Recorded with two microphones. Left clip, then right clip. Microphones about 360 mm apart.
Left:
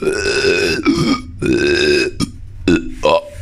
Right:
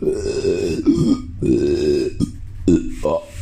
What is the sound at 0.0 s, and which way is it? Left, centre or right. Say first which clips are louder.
Burping: left 5 dB; left.